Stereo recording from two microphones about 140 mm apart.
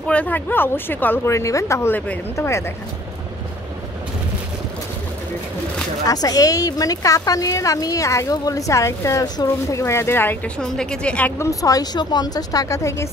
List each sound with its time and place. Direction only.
0.0 s speech: 10° left (ahead or behind)
6.0 s a woman's voice: 25° left (ahead or behind)